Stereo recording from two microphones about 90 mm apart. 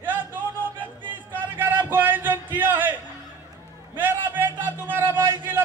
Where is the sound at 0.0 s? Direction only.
20° right (ahead or behind).